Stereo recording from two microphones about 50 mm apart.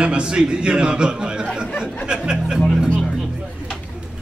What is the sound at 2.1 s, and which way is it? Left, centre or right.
Music, centre.